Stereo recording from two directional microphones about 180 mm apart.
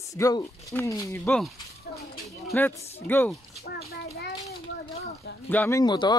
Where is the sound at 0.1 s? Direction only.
20° left (ahead or behind).